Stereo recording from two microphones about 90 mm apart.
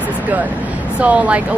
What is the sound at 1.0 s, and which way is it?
Speech, 15° right (ahead or behind).